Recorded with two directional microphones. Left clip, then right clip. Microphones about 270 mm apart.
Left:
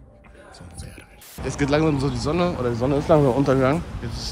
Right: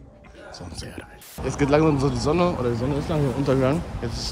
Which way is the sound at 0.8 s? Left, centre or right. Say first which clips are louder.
Right 6 dB; right.